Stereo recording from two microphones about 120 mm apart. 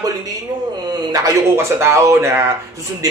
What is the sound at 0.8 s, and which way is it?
Speech, 30° right (ahead or behind).